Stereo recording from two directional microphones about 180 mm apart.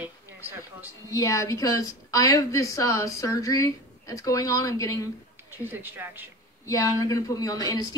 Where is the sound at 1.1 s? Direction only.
20° left (ahead or behind).